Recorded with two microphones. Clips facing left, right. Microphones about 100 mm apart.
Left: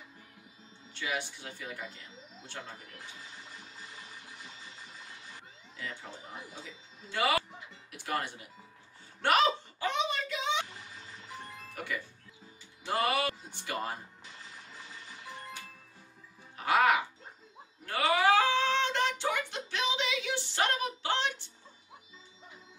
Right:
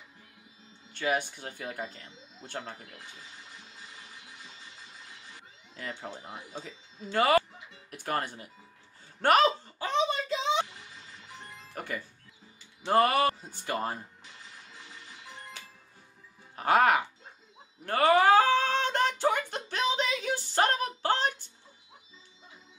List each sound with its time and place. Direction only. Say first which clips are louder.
0.9 s speech: right 6 dB; 45° right (ahead or behind)
5.8 s speech: right 4 dB; 40° right (ahead or behind)
9.2 s a sound: right 4 dB; 45° right (ahead or behind)
11.7 s music: right 1 dB; 45° right (ahead or behind)
12.8 s speech: right 6 dB; 45° right (ahead or behind)
16.5 s speech: right 3 dB; 45° right (ahead or behind)
17.8 s a sound: right 5 dB; 45° right (ahead or behind)